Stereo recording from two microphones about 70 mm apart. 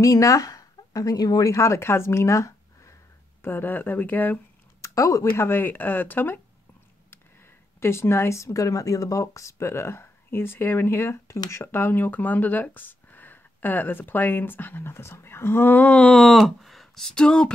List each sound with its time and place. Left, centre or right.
0.0 s speech: left
1.4 s speech: left
3.4 s speech: left
4.8 s speech: left
5.4 s speech: left
16.2 s speech: centre